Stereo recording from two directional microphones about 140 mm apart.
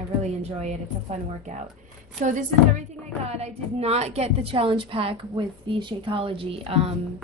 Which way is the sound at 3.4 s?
50° right (ahead or behind).